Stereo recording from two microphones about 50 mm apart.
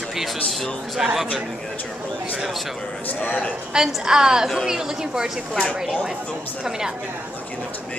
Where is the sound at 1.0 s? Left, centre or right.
Centre.